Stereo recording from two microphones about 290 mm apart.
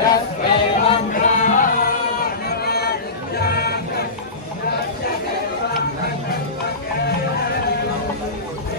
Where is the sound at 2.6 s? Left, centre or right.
Left.